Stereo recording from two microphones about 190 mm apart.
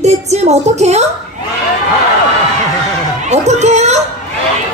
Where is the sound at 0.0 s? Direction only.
35° right (ahead or behind).